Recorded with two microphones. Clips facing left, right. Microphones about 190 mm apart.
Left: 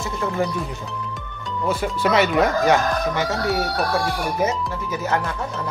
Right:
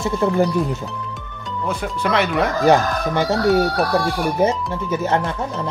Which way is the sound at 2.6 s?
35° right (ahead or behind).